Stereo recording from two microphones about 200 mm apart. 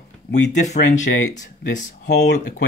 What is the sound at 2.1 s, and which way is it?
Speech, 55° left (ahead or behind).